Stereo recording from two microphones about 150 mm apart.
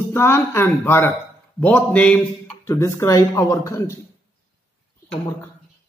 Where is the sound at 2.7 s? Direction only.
20° left (ahead or behind).